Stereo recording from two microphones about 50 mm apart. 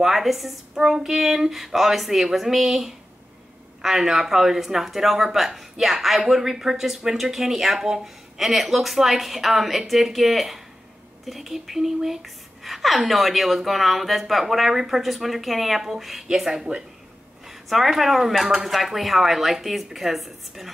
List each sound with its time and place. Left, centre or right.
0.0 s speech: centre
17.5 s speech: centre